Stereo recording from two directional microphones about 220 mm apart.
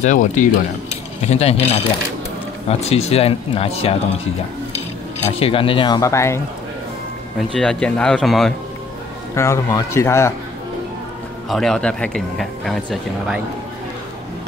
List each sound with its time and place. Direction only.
0.0 s speech: 35° left (ahead or behind)
2.9 s speech: 25° left (ahead or behind)
5.4 s speech: 25° left (ahead or behind); by 8.5 s centre (ahead or behind)
9.3 s speech: 10° left (ahead or behind)
11.4 s speech: centre (ahead or behind)